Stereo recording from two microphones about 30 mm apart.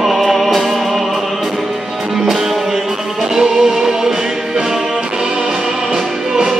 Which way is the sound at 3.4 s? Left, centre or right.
Centre.